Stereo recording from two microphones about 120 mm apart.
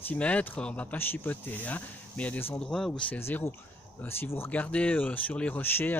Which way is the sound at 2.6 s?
5° left (ahead or behind).